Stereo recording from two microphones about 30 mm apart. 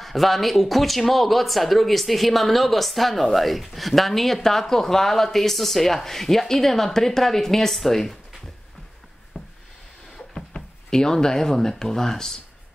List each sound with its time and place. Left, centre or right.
0.0 s speech: centre
9.3 s a sound: centre
10.3 s speech: centre